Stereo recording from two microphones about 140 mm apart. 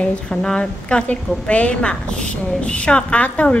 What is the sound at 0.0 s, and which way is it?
A woman's voice, 5° left (ahead or behind).